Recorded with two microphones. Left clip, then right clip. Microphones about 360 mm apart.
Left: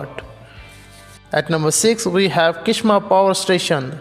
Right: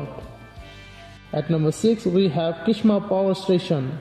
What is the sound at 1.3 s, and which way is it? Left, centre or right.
A man's voice, left.